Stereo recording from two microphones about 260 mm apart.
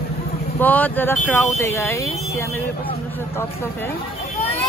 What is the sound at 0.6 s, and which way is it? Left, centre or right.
Speech, centre.